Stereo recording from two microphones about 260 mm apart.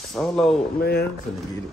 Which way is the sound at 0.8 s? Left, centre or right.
Left.